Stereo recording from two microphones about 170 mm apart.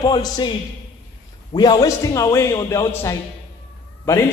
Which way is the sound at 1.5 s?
25° left (ahead or behind).